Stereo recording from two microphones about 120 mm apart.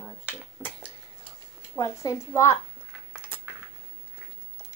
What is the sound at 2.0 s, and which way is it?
Speech, 25° left (ahead or behind).